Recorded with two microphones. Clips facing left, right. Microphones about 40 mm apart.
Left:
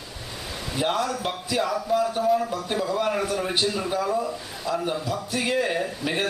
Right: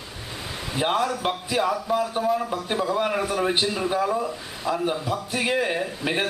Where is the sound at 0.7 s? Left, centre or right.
Centre.